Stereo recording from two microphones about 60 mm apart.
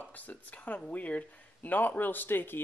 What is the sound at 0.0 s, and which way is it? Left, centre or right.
Speech, left.